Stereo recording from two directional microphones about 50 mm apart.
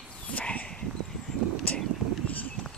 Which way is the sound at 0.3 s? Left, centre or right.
Left.